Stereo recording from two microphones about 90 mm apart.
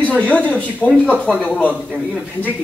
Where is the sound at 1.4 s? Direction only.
15° left (ahead or behind).